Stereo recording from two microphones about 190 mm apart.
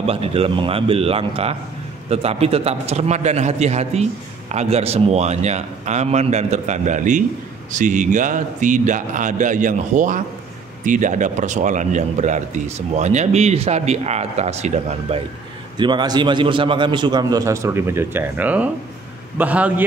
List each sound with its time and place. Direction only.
0.0 s a man's voice: 30° right (ahead or behind)
15.8 s a man's voice: 25° right (ahead or behind)